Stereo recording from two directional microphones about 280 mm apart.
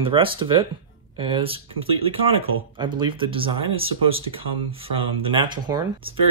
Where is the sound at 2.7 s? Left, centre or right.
Centre.